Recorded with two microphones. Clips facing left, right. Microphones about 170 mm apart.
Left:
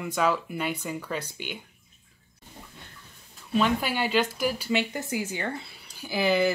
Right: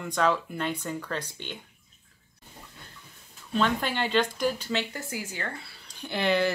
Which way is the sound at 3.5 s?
5° left (ahead or behind).